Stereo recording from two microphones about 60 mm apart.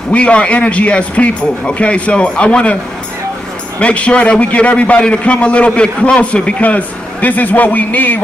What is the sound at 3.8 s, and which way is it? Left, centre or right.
A man's voice, left.